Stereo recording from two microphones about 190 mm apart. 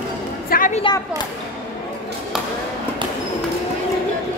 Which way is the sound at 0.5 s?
45° left (ahead or behind).